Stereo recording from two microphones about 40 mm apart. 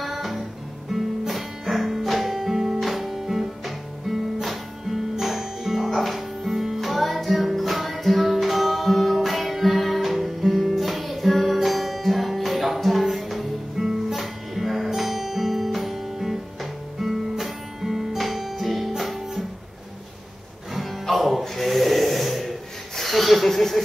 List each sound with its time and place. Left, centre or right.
0.0 s music: centre
13.8 s music: centre
14.1 s music: centre
21.2 s snort: centre